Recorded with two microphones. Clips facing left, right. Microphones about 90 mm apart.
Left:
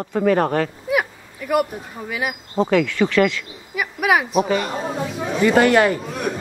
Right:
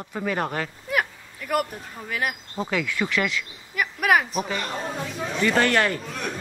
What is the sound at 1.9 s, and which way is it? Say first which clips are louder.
Speech: left 2 dB; 5° left (ahead or behind).